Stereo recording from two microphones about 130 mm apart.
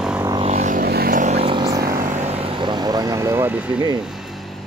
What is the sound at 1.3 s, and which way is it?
Vehicle, 45° right (ahead or behind).